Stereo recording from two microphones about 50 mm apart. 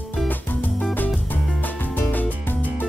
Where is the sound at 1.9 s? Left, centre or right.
Left.